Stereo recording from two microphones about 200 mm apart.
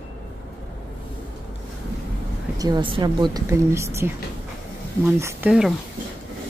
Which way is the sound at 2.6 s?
20° right (ahead or behind).